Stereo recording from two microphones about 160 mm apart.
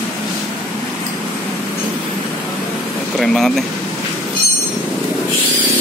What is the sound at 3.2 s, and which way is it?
Speech, centre (ahead or behind).